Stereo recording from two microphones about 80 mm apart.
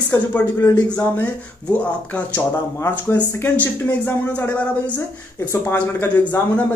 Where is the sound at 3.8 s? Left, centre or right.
Left.